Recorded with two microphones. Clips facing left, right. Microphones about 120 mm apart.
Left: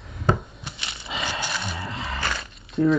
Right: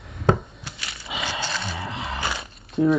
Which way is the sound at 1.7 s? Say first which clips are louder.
Right 1 dB; 25° right (ahead or behind).